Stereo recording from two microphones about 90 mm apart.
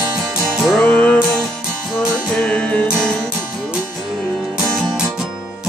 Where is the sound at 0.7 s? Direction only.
15° left (ahead or behind).